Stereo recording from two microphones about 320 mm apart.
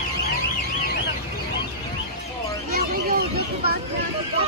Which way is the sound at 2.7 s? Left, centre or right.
Right.